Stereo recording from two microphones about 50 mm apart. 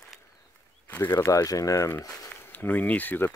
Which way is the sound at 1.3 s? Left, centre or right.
Left.